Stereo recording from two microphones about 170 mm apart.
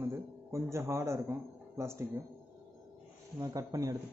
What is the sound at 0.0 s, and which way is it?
Speech, 15° right (ahead or behind).